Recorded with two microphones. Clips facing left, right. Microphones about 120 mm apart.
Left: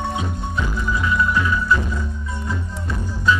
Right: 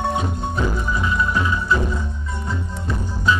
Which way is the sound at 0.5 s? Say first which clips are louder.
Even; 30° right (ahead or behind).